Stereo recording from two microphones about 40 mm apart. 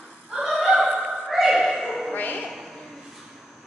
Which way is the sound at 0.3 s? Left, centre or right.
Centre.